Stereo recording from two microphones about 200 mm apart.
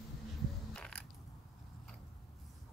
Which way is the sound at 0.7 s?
5° left (ahead or behind).